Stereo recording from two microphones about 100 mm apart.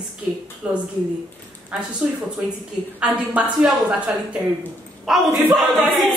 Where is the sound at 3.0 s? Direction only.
15° right (ahead or behind).